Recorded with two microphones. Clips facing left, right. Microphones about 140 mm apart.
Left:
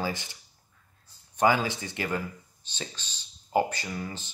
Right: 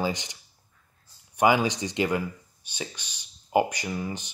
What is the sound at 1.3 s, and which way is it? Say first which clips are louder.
Speech: right 2 dB; 15° right (ahead or behind).